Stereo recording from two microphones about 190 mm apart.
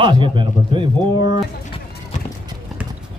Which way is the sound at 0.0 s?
25° right (ahead or behind).